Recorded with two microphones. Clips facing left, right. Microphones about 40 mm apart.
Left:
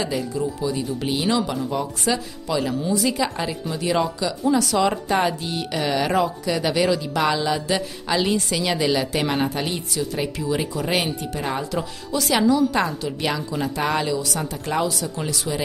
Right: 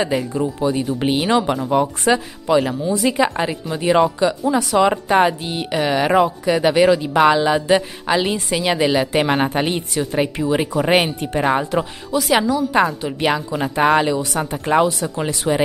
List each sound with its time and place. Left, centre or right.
0.0 s speech: right
4.5 s speech: centre
12.1 s a woman's voice: centre; by 15.6 s right